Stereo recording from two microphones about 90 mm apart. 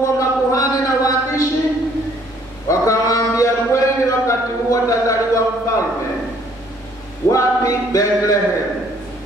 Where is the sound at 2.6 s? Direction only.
35° left (ahead or behind).